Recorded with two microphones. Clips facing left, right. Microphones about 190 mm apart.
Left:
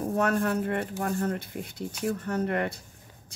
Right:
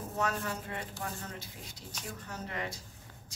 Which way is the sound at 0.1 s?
55° left (ahead or behind).